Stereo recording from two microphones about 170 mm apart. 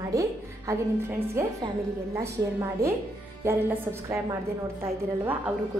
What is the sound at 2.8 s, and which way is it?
A woman's voice, 15° right (ahead or behind).